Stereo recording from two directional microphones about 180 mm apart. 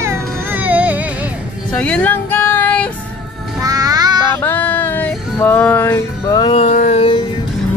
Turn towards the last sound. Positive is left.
turn(degrees=35)  # may be behind; listen again after turning